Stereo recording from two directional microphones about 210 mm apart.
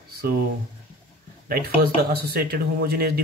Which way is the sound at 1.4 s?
45° right (ahead or behind).